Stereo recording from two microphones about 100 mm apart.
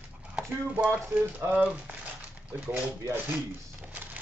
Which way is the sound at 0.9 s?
20° right (ahead or behind).